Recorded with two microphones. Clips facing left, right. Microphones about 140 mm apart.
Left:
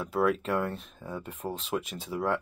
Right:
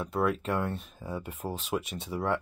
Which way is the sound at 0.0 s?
Centre (ahead or behind).